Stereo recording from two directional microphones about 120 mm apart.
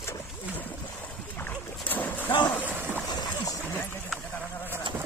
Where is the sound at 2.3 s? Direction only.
40° left (ahead or behind).